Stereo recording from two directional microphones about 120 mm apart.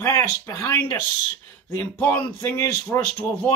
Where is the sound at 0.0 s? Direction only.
20° left (ahead or behind).